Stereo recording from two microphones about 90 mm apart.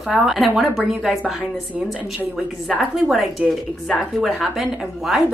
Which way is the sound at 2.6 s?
5° right (ahead or behind).